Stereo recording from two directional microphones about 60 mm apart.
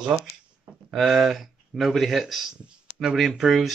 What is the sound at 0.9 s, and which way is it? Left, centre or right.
Speech, centre.